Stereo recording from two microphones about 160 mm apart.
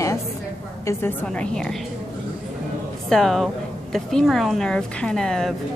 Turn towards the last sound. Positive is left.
turn(degrees=5)  # may be behind; listen again after turning